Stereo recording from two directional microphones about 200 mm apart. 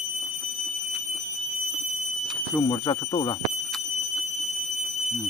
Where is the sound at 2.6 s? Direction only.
20° left (ahead or behind).